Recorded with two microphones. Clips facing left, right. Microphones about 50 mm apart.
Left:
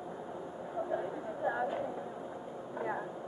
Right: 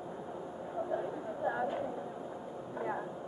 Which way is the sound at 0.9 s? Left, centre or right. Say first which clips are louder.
Even; centre.